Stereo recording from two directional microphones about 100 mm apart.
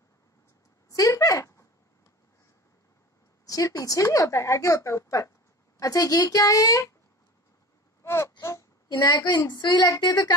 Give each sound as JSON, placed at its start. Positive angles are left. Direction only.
{"t": 0.8, "sound": "a sound", "side_deg": 35}
{"t": 3.4, "sound": "speech", "side_deg": 35}
{"t": 8.0, "sound": "whimper", "side_deg": 25}
{"t": 8.9, "sound": "a woman's voice", "side_deg": 45}